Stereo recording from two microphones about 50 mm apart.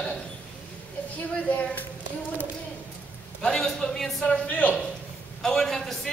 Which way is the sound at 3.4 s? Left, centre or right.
Centre.